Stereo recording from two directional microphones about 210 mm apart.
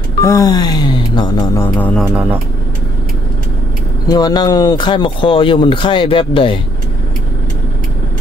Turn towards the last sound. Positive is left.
turn(degrees=25)  # may be behind; listen again after turning